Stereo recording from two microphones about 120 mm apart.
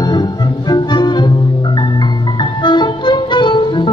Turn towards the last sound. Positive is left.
turn(degrees=40)  # may be behind; listen again after turning